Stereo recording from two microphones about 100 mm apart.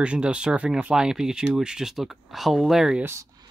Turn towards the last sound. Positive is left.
turn(degrees=-5)  # may be behind; listen again after turning